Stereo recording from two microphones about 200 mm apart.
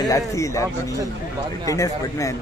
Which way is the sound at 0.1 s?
15° left (ahead or behind).